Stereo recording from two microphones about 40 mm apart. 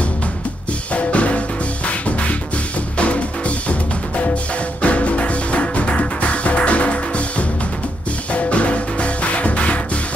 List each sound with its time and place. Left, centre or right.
0.9 s music: left
3.0 s music: left
4.8 s music: left